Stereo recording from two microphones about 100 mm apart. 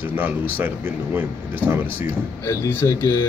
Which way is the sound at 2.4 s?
25° left (ahead or behind).